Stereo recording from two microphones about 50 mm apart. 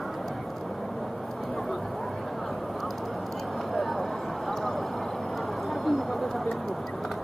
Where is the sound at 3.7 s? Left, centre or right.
Centre.